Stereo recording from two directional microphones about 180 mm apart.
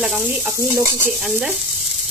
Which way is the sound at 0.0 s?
5° right (ahead or behind).